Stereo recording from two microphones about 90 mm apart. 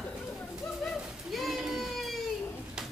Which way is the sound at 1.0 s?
Centre (ahead or behind).